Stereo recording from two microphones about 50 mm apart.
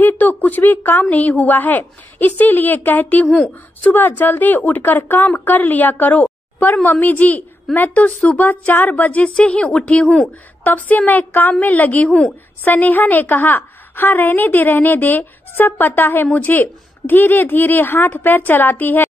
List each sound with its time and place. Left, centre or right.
0.0 s a sound: left
1.0 s a woman's voice: left
10.0 s speech: centre
10.6 s a woman's voice: left